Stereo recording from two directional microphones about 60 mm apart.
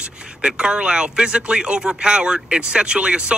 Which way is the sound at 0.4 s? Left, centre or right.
Centre.